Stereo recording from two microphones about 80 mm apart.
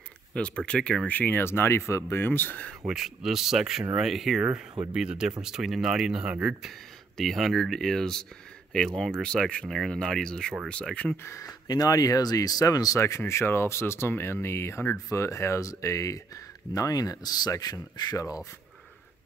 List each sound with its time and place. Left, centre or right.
0.3 s speech: centre
2.9 s speech: centre
11.2 s speech: left
11.6 s speech: left
13.2 s speech: left